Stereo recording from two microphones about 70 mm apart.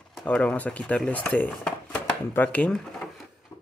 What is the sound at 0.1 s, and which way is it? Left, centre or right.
Speech, centre.